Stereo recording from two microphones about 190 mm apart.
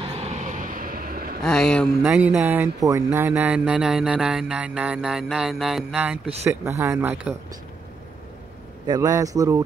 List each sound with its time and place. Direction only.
0.0 s vehicle: 30° right (ahead or behind); by 1.4 s 50° right (ahead or behind)
1.4 s speech: 5° left (ahead or behind)
2.0 s speech: 5° right (ahead or behind)
8.8 s speech: 20° right (ahead or behind)